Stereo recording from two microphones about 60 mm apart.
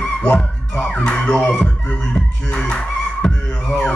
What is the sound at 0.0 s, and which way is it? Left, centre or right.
Music, centre.